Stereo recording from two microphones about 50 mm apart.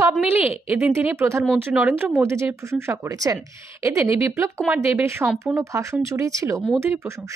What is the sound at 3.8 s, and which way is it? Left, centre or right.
Speech, right.